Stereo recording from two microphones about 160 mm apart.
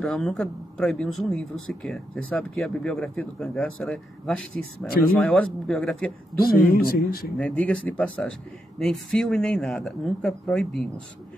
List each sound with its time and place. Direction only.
0.0 s speech: centre (ahead or behind)
6.7 s speech: 70° left (ahead or behind)
7.3 s speech: 5° left (ahead or behind)